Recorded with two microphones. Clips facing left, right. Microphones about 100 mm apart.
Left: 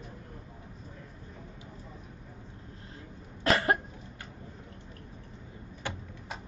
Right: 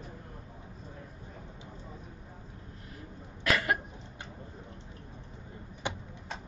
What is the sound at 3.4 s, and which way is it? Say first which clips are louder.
Cough: left 3 dB; 30° left (ahead or behind).